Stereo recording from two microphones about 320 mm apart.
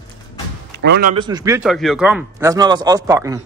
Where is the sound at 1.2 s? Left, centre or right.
Centre.